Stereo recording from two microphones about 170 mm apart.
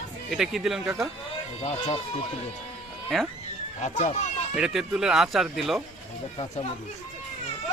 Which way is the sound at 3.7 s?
45° left (ahead or behind).